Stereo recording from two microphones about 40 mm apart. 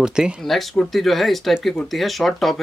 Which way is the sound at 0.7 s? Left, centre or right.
Centre.